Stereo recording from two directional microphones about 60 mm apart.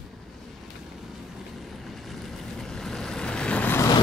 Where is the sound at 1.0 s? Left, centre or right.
Centre; by 3.7 s left.